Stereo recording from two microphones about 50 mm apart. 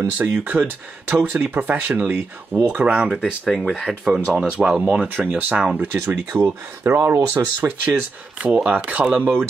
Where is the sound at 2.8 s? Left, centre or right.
Right.